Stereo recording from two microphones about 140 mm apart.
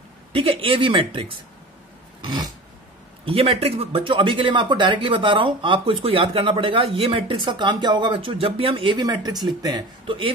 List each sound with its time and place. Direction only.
0.3 s speech: 40° right (ahead or behind)
2.2 s a sound: 30° right (ahead or behind)
3.3 s a man's voice: 45° right (ahead or behind); by 9.8 s 25° right (ahead or behind)
10.0 s speech: 35° right (ahead or behind)